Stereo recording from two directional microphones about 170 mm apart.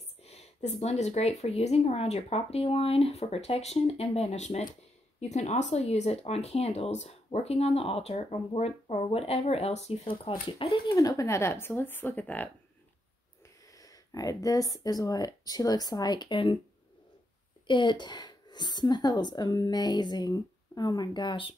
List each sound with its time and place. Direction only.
0.2 s speech: 40° left (ahead or behind)
11.0 s speech: 20° left (ahead or behind)
13.7 s a woman's voice: 20° left (ahead or behind)
17.6 s a woman's voice: 30° left (ahead or behind)